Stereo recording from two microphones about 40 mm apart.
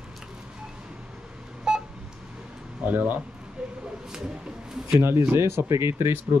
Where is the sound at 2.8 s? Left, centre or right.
Right.